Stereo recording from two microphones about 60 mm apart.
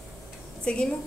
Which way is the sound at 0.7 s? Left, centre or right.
Left.